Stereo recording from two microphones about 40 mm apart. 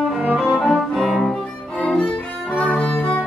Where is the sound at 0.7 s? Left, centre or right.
Centre.